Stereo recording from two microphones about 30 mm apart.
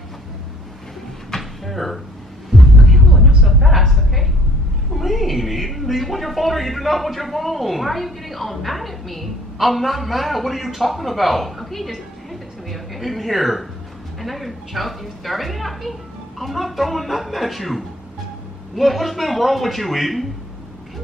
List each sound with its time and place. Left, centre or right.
1.3 s drawer open or close: centre
1.7 s speech: centre
2.6 s heart sounds: centre
3.4 s a sound: centre
4.9 s a woman's voice: centre